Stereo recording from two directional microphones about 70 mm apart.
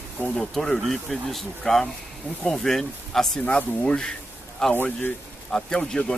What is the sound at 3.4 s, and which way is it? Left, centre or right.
Speech, centre.